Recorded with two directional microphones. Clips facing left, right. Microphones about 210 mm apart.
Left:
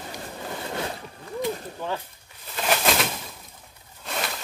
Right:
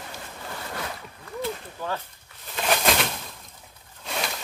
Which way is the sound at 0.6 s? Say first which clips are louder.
Left 4 dB; 25° left (ahead or behind).